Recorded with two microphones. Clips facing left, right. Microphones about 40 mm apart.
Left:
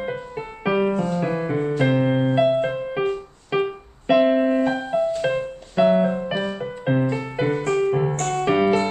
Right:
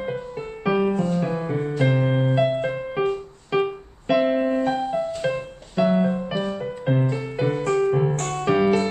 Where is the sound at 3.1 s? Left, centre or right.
Centre.